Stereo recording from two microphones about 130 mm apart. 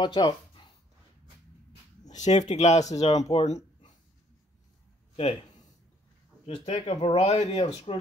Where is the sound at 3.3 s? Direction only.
60° left (ahead or behind).